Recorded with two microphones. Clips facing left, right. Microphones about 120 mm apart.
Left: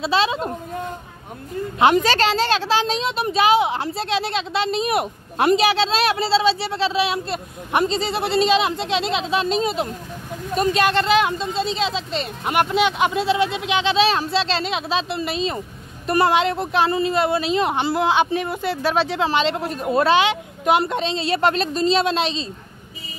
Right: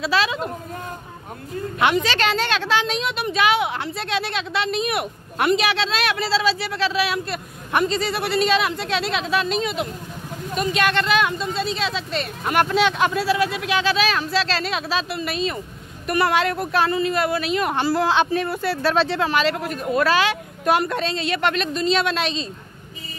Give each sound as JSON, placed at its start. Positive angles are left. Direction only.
{"t": 0.0, "sound": "a child's voice", "side_deg": 30}
{"t": 1.8, "sound": "a woman's voice", "side_deg": 40}